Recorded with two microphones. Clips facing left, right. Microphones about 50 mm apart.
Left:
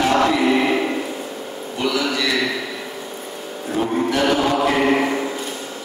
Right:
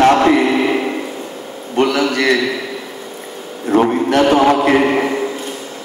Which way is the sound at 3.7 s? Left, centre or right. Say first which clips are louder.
Right 9 dB; right.